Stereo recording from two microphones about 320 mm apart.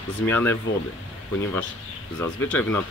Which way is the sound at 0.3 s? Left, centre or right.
Centre.